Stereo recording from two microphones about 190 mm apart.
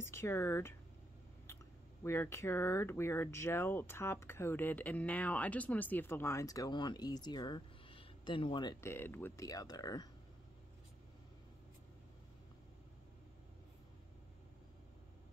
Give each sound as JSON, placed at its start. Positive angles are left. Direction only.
{"t": 0.0, "sound": "speech", "side_deg": 15}
{"t": 2.0, "sound": "speech", "side_deg": 15}
{"t": 8.9, "sound": "speech", "side_deg": 10}